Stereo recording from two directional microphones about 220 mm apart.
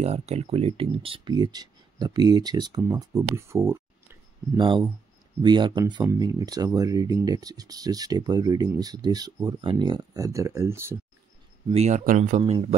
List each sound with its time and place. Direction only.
0.0 s speech: 30° right (ahead or behind); by 4.2 s 10° right (ahead or behind)
4.6 s speech: 20° right (ahead or behind)
11.7 s speech: 30° right (ahead or behind)
12.4 s speech: 20° right (ahead or behind)